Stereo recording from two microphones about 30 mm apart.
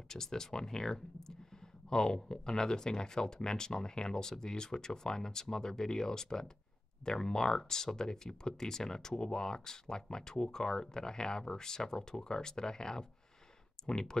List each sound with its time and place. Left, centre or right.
0.1 s speech: centre